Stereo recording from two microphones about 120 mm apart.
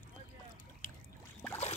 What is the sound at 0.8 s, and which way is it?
Boat, 90° left.